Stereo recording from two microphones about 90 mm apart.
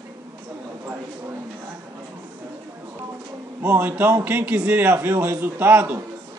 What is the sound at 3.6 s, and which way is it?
A man's voice, 20° right (ahead or behind).